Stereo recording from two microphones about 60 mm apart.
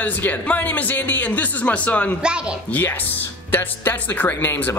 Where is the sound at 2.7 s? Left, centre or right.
Left.